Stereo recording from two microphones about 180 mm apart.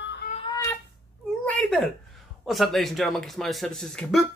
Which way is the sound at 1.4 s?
5° left (ahead or behind).